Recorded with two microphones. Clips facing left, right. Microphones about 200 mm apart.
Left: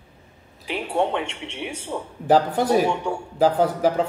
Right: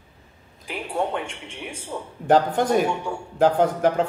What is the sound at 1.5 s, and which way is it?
Speech, 20° left (ahead or behind).